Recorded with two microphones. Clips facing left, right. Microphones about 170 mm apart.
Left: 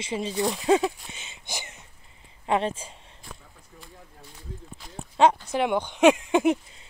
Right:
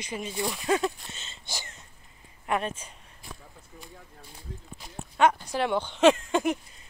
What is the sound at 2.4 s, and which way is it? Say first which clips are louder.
Speech: left 4 dB; 25° left (ahead or behind).